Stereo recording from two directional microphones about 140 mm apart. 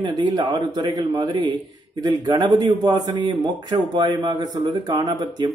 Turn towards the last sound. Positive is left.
turn(degrees=-30)  # may be behind; listen again after turning